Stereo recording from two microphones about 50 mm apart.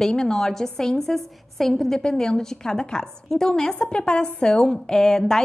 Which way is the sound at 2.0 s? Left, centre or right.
Centre.